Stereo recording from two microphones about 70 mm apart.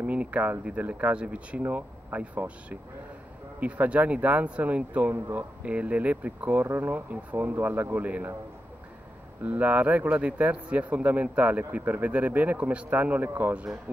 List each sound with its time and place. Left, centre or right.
0.0 s speech: centre
5.1 s speech: right
5.6 s speech: centre
9.4 s speech: right